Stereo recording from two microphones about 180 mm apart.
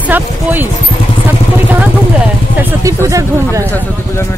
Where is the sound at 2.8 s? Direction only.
15° right (ahead or behind).